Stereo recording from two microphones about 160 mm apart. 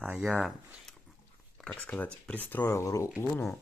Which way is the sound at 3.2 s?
5° left (ahead or behind).